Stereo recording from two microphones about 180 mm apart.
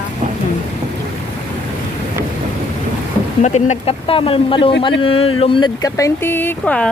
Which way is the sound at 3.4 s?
40° left (ahead or behind).